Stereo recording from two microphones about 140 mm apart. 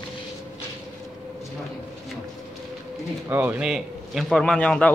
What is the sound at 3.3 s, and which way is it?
Speech, 15° right (ahead or behind).